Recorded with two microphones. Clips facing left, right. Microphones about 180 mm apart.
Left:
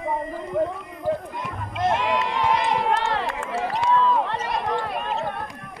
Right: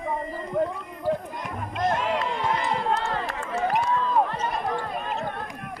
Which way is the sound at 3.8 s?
80° left.